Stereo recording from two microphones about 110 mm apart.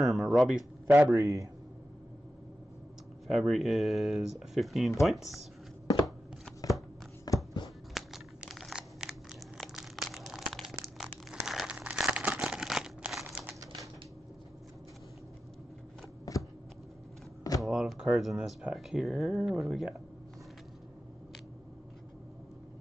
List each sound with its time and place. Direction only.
0.0 s speech: centre (ahead or behind)
1.1 s a man's voice: 30° right (ahead or behind)
3.3 s speech: 5° right (ahead or behind)
7.3 s a sound: 35° left (ahead or behind)
7.9 s a sound: centre (ahead or behind)
11.4 s crumpling: 5° right (ahead or behind)
16.3 s shuffling cards: 30° left (ahead or behind)
17.6 s speech: centre (ahead or behind)